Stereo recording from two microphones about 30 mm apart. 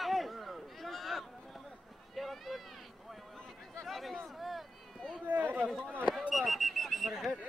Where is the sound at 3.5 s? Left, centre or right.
Centre.